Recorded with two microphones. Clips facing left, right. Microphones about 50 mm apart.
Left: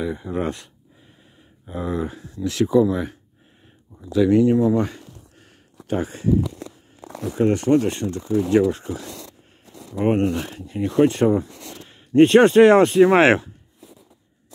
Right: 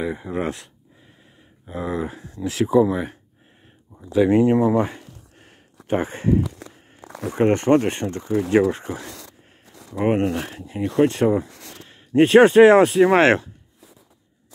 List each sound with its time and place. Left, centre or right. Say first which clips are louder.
0.0 s speech: even; centre
0.3 s speech: even; centre
1.7 s speech: even; centre
2.1 s speech: left 1 dB; right
2.4 s speech: even; centre
4.8 s a sound: right 1 dB; right
7.2 s speech: right 1 dB; right
8.4 s speech: even; right
9.9 s speech: even; centre
13.2 s speech: left 1 dB; centre